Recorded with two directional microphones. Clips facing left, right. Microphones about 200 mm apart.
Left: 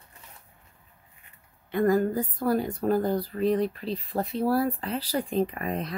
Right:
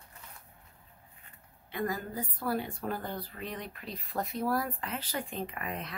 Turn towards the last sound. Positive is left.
turn(degrees=35)  # may be behind; listen again after turning